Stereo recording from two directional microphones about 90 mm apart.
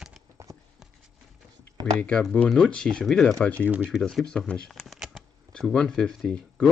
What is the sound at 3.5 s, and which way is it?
Speech, 20° right (ahead or behind).